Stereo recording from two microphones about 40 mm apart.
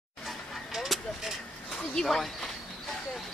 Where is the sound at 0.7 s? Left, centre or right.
Centre.